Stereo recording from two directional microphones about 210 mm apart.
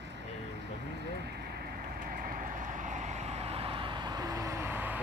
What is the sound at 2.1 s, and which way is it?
Vehicle, 45° right (ahead or behind).